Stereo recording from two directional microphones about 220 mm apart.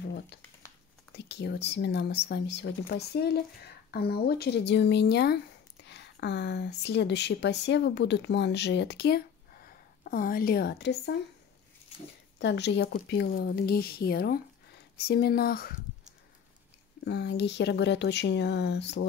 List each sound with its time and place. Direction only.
0.0 s a sound: 50° left (ahead or behind)
1.1 s speech: 50° left (ahead or behind)
12.4 s speech: 50° left (ahead or behind)
17.0 s speech: 50° left (ahead or behind)